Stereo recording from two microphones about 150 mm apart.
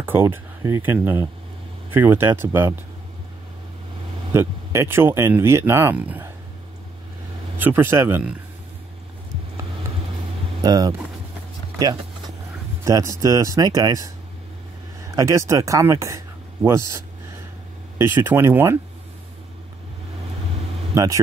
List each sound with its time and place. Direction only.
0.0 s speech: 15° right (ahead or behind)
4.3 s speech: 15° right (ahead or behind)
7.5 s speech: 15° right (ahead or behind)
10.6 s speech: 25° right (ahead or behind)
12.8 s speech: 20° right (ahead or behind)
20.9 s speech: 20° right (ahead or behind)